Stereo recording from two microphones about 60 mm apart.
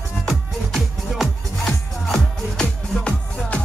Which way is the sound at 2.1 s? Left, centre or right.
Centre.